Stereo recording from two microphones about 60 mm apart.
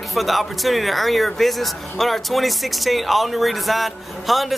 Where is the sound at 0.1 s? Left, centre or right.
Centre.